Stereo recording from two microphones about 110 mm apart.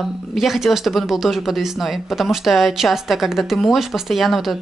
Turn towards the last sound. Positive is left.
turn(degrees=0)  # may be behind; listen again after turning